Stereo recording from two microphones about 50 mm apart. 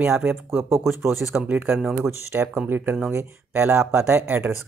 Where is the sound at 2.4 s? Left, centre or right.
Right.